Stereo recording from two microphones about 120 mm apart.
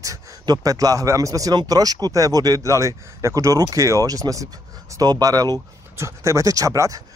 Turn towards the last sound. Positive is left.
turn(degrees=-25)  # may be behind; listen again after turning